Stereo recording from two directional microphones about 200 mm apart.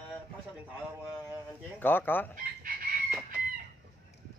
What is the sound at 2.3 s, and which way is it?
Chicken, 45° right (ahead or behind).